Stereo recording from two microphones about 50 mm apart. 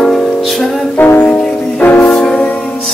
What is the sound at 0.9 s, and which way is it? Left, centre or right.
Music, left.